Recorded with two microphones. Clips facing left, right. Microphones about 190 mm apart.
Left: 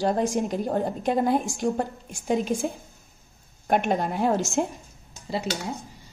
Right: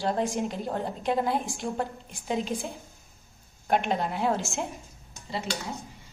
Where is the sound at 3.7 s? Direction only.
45° left (ahead or behind).